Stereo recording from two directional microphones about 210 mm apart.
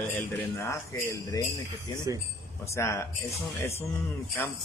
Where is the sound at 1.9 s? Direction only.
15° right (ahead or behind).